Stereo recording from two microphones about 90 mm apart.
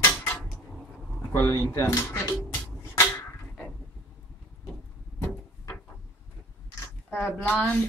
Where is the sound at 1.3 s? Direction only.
25° left (ahead or behind).